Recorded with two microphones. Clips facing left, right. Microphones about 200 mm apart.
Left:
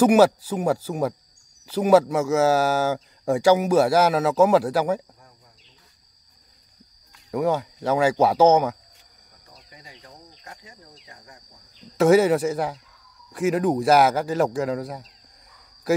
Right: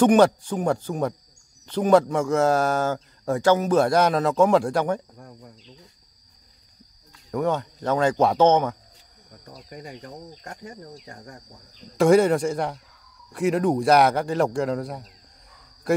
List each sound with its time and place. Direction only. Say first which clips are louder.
0.0 s a man's voice: even; 5° left (ahead or behind)
7.2 s speech: left 1 dB; 5° left (ahead or behind)
9.5 s cricket: right 10 dB; 55° right (ahead or behind)
12.0 s a man's voice: even; 5° left (ahead or behind)